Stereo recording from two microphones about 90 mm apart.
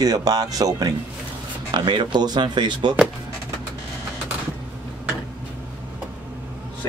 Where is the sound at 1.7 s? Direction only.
60° right (ahead or behind).